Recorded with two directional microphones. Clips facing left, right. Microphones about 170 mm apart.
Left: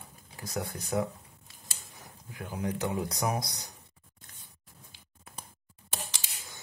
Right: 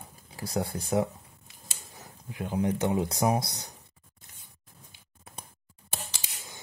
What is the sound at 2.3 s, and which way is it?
Speech, 20° right (ahead or behind).